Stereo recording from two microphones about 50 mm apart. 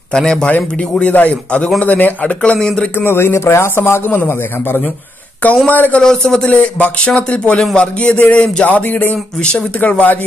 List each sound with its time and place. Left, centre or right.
0.1 s speech: centre
0.5 s speech: left
2.4 s speech: centre
3.0 s a man's voice: left
5.7 s speech: left
6.0 s speech: centre
6.4 s speech: left
9.1 s speech: centre
9.8 s speech: left